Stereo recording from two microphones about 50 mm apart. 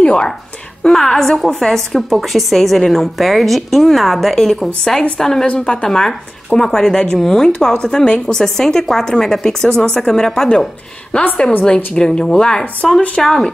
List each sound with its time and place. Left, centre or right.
0.0 s speech: centre
0.8 s a woman's voice: centre